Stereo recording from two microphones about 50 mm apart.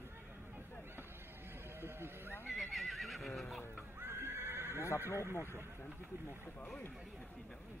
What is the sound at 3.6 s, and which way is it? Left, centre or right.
Music, left.